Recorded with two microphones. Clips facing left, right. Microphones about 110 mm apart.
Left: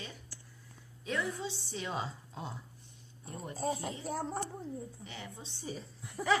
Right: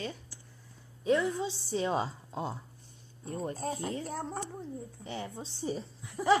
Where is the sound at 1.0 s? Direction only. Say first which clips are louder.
Right 8 dB; 25° right (ahead or behind).